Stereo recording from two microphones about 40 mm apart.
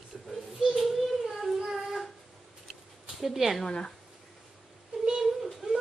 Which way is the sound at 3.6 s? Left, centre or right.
Left.